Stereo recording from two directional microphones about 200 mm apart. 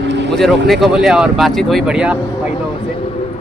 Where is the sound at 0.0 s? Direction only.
60° right (ahead or behind).